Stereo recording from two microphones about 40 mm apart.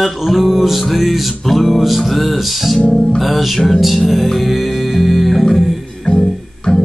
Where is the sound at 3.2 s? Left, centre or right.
Centre.